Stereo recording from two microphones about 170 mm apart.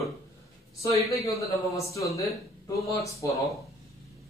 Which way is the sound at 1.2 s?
20° left (ahead or behind).